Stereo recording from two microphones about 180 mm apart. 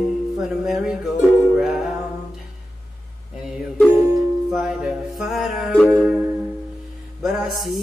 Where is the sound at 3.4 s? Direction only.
5° right (ahead or behind).